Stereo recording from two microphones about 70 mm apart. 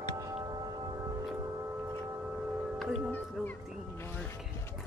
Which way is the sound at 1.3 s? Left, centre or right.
Right.